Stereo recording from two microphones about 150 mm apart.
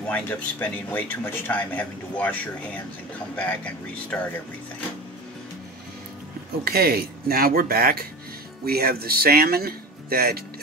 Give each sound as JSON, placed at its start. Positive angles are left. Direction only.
{"t": 0.0, "sound": "speech", "side_deg": 10}
{"t": 6.6, "sound": "speech", "side_deg": -90}